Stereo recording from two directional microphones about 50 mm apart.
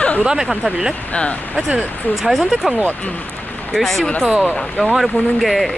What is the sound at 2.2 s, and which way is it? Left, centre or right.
Speech, centre.